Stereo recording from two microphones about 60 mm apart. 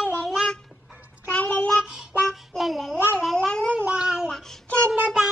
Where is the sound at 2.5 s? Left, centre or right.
Centre.